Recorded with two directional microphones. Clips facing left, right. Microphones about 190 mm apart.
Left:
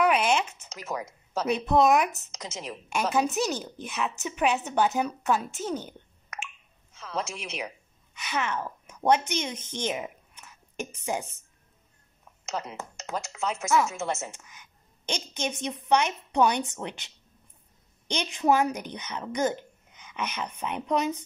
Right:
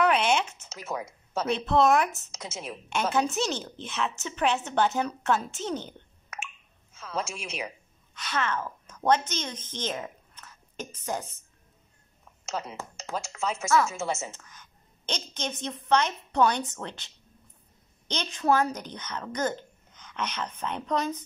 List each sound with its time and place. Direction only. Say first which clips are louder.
0.0 s a sound: even; 10° left (ahead or behind)
0.8 s speech: even; 5° right (ahead or behind)
1.4 s a woman's voice: left 1 dB; 10° left (ahead or behind)
2.3 s a woman's voice: even; 5° right (ahead or behind); by 11.2 s 15° left (ahead or behind)
12.4 s a woman's voice: even; centre (ahead or behind)
14.3 s a woman's voice: even; 15° left (ahead or behind)
18.1 s a woman's voice: left 1 dB; 15° left (ahead or behind)